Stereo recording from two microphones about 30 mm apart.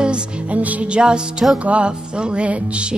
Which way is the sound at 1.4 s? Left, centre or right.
Right.